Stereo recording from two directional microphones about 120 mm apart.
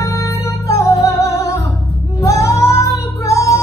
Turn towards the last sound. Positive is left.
turn(degrees=25)  # may be behind; listen again after turning